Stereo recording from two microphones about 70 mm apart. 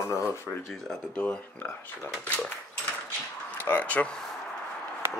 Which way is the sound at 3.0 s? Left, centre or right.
Left.